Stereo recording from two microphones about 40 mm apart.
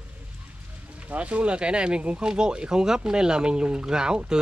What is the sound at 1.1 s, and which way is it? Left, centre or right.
Speech, right.